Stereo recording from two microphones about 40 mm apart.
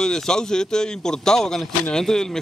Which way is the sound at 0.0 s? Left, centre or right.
Centre.